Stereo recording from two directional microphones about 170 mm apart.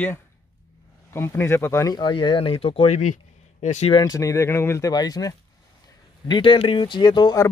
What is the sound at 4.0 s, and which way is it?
Speech, 20° left (ahead or behind).